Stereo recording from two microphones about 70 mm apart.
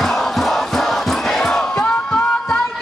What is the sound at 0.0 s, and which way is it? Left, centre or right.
Crowd, centre.